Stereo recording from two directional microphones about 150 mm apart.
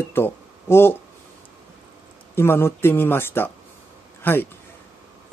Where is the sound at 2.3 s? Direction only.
15° left (ahead or behind).